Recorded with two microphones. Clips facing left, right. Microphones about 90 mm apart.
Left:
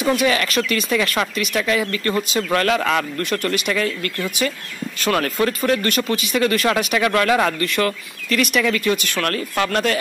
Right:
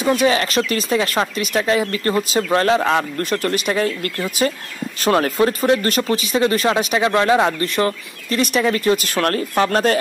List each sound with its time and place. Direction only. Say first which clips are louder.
0.2 s speech: right 2 dB; 35° right (ahead or behind)